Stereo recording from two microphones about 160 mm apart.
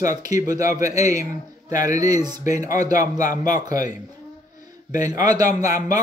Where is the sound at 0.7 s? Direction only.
20° right (ahead or behind).